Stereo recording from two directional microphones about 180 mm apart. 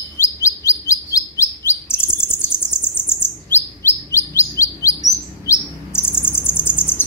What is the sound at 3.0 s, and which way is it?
Bird, 10° left (ahead or behind).